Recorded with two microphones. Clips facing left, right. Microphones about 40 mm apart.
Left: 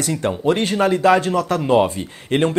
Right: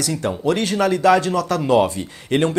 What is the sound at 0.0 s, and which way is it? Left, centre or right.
Speech, left.